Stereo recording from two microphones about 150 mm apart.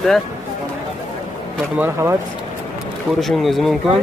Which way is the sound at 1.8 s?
15° right (ahead or behind).